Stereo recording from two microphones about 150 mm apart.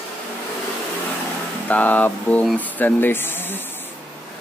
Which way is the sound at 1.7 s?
10° left (ahead or behind).